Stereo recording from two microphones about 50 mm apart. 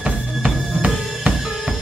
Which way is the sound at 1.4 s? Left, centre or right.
Centre.